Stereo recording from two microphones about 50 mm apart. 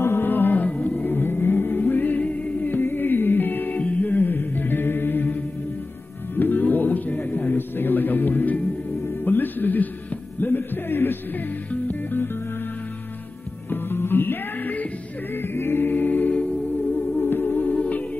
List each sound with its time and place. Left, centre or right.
0.0 s music: left
0.7 s music: left
13.7 s music: left
15.3 s singing: left
17.2 s music: left